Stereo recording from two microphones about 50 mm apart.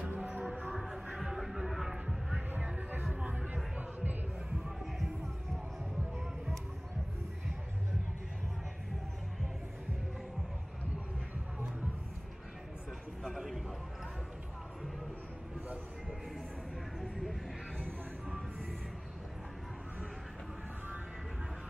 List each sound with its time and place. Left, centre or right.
0.1 s music: right
0.7 s music: centre
2.6 s music: right
3.3 s a sound: right
3.7 s music: right
4.6 s music: centre
13.2 s a sound: centre